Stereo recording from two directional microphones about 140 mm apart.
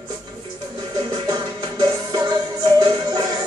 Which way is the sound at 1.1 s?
30° right (ahead or behind).